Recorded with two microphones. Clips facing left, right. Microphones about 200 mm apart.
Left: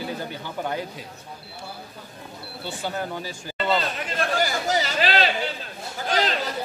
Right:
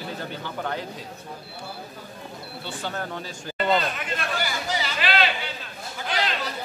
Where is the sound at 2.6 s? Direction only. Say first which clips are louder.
Left 3 dB; 10° left (ahead or behind).